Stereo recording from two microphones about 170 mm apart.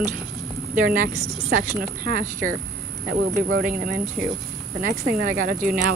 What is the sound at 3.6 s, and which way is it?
Speech, 55° right (ahead or behind).